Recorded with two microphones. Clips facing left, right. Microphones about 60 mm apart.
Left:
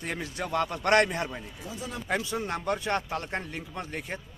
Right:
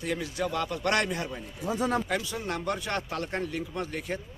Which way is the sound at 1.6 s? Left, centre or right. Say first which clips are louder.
Right 12 dB; right.